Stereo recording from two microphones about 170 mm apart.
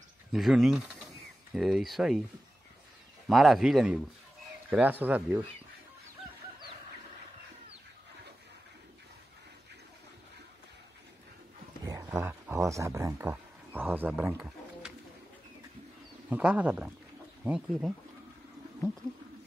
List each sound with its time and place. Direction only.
0.3 s speech: centre (ahead or behind)
3.3 s speech: centre (ahead or behind)
11.8 s a sound: 20° right (ahead or behind)
16.3 s speech: 10° right (ahead or behind)